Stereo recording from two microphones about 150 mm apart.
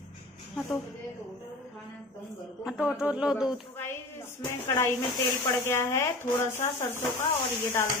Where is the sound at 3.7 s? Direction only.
15° left (ahead or behind).